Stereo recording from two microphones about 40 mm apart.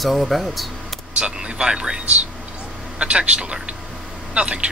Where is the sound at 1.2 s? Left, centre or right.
Right.